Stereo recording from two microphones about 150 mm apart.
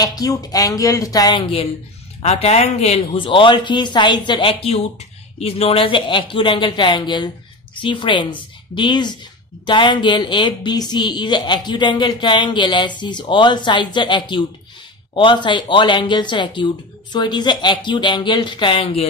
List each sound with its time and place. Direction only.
0.0 s speech: 25° left (ahead or behind)
2.2 s a woman's voice: 45° left (ahead or behind)